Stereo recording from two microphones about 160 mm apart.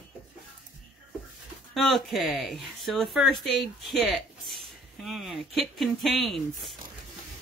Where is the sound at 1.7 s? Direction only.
Centre (ahead or behind).